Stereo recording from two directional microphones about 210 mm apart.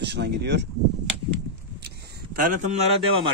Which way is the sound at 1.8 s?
45° right (ahead or behind).